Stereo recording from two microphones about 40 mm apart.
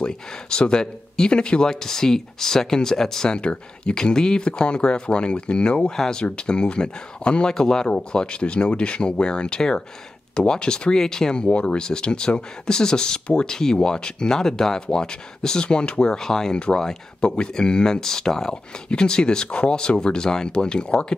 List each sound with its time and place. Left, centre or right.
0.0 s speech: left
3.3 s speech: left
7.9 s speech: left
11.4 s speech: left
16.5 s speech: left